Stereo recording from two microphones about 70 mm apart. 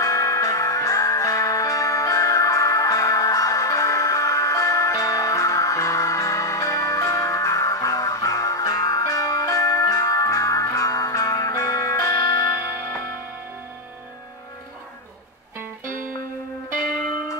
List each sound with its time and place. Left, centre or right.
0.0 s music: left